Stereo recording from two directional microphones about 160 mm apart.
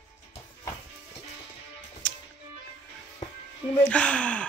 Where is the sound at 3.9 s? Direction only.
5° left (ahead or behind).